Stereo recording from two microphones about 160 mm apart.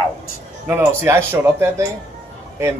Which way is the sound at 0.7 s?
15° right (ahead or behind).